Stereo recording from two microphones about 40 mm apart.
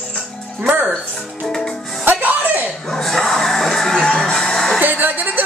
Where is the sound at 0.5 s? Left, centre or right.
Right.